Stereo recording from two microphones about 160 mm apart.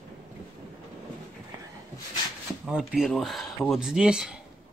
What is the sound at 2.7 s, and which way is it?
Speech, centre (ahead or behind).